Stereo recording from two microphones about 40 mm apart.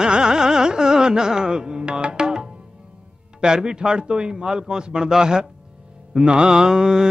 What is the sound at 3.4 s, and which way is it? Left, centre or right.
A man's voice, centre.